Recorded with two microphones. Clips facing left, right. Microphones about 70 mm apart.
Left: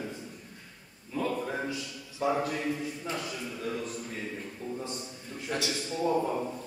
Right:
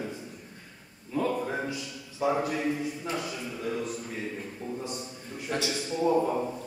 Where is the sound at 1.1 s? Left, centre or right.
Centre.